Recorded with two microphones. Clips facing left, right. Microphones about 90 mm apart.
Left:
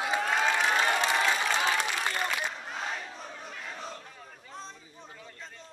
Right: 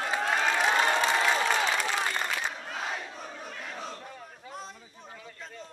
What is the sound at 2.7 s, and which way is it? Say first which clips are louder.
Battle cry: right 1 dB; 5° right (ahead or behind).